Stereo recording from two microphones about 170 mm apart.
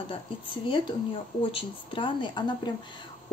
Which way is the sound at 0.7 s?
30° left (ahead or behind).